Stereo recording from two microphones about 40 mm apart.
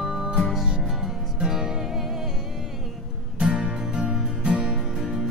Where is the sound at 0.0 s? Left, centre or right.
Centre.